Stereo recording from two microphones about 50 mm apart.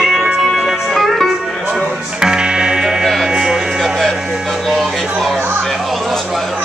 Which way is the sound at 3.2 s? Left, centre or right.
Centre.